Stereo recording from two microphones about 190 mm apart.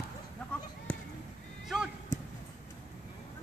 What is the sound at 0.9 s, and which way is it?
Chop, 5° left (ahead or behind).